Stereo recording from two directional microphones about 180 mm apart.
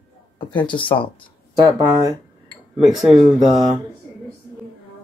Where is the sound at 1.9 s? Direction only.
20° right (ahead or behind).